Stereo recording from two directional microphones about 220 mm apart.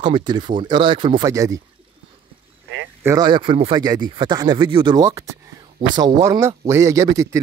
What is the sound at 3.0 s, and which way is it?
Speech, 15° right (ahead or behind).